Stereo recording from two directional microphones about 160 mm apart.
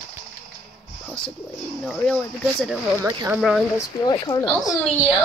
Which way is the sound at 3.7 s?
20° left (ahead or behind).